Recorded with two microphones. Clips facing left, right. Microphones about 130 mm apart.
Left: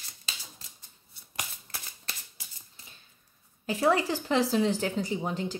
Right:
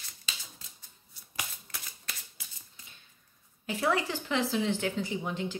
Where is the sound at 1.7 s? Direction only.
30° left (ahead or behind).